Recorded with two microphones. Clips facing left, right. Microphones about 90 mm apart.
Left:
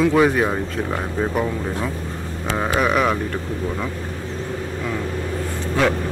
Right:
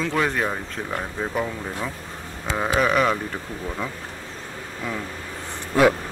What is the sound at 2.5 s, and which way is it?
Speech, 5° left (ahead or behind).